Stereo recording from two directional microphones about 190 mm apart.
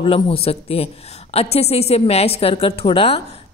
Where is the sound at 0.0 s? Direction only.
30° left (ahead or behind).